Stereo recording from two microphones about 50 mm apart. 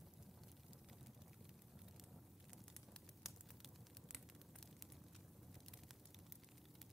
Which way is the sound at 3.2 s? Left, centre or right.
Centre.